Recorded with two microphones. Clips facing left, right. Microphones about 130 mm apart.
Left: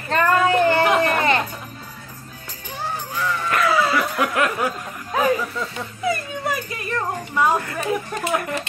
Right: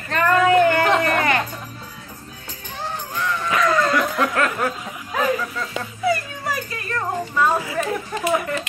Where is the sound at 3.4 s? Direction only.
5° left (ahead or behind).